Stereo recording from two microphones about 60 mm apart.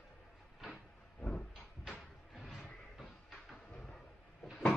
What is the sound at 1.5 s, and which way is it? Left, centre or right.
Cupboard open or close, centre.